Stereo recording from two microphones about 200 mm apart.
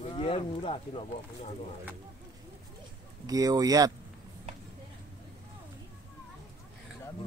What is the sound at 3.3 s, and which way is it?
Speech, 20° right (ahead or behind).